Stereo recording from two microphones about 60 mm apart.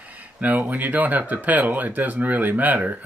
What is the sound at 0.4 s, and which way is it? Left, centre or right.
Speech, right.